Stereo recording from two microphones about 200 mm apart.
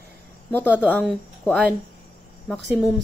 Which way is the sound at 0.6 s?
5° right (ahead or behind).